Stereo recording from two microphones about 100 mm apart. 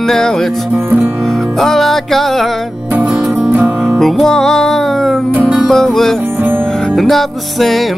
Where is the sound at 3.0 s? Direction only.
15° right (ahead or behind).